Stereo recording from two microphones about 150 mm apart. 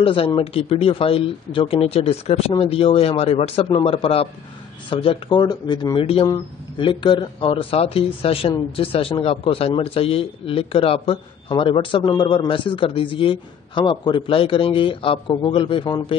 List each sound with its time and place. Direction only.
0.0 s speech: 35° left (ahead or behind)